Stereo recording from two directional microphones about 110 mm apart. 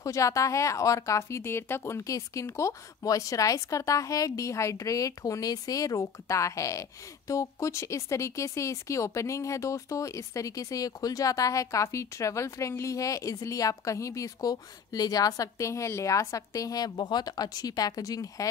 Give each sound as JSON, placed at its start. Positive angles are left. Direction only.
{"t": 0.0, "sound": "speech", "side_deg": 30}